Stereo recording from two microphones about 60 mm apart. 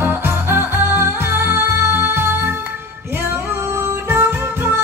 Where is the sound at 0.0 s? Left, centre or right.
Right.